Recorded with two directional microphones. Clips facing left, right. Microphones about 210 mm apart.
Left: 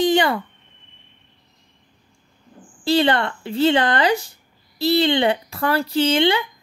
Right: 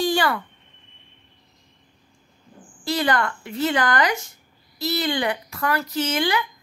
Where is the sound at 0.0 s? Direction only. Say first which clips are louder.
Left 4 dB; 20° left (ahead or behind).